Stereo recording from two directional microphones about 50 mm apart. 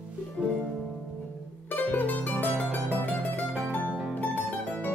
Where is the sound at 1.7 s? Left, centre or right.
Left.